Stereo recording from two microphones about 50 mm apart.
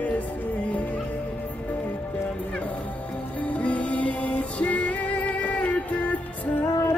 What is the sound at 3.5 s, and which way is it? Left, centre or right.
Music, left.